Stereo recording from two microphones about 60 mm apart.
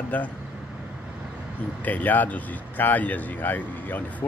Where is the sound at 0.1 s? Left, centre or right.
Left.